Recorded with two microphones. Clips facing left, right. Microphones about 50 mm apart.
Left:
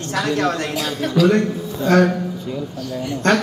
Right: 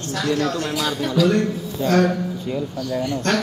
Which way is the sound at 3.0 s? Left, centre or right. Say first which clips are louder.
Left 6 dB; left.